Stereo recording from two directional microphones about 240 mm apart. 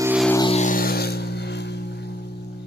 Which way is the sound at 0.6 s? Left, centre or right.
Left.